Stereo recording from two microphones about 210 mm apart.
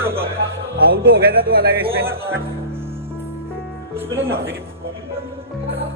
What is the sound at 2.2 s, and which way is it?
Speech, 10° right (ahead or behind).